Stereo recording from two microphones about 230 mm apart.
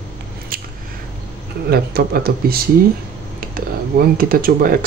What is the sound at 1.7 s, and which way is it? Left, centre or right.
Speech, right.